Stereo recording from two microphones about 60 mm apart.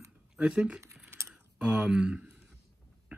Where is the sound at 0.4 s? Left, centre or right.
Centre.